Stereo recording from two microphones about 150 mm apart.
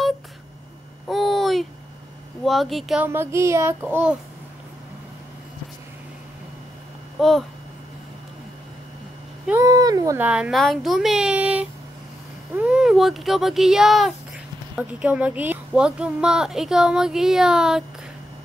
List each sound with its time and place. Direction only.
1.0 s a sound: centre (ahead or behind)
2.4 s speech: centre (ahead or behind)
3.1 s child singing: 15° right (ahead or behind)
7.2 s speech: centre (ahead or behind)
9.6 s a sound: 25° right (ahead or behind)
10.1 s speech: 10° right (ahead or behind)